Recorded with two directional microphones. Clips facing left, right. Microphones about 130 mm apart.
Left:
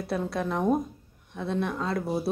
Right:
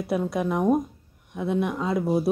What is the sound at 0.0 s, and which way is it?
Speech, 15° right (ahead or behind).